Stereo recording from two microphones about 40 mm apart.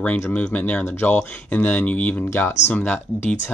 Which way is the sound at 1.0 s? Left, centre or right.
Left.